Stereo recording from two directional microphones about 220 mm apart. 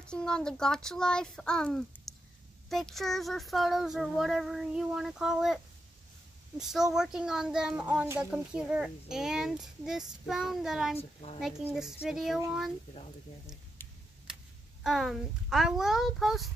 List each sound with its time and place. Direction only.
0.0 s child singing: 5° left (ahead or behind)
6.6 s child singing: centre (ahead or behind)
11.0 s a woman's voice: 25° left (ahead or behind)
11.3 s child singing: centre (ahead or behind)
14.8 s child singing: centre (ahead or behind)